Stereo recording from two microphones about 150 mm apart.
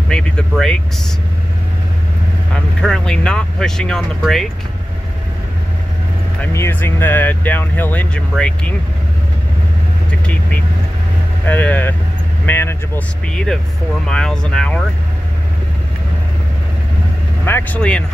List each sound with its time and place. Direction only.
0.1 s speech: 5° left (ahead or behind)
2.5 s speech: 5° left (ahead or behind)
6.4 s speech: 15° left (ahead or behind)
10.2 s speech: 10° left (ahead or behind)
17.5 s speech: 15° left (ahead or behind)